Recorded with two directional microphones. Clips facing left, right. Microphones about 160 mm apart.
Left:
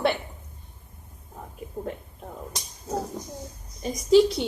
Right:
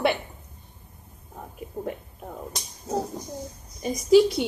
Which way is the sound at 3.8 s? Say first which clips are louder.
Right 1 dB; 5° right (ahead or behind).